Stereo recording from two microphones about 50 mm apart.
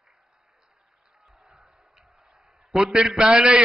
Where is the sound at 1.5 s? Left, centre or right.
Centre.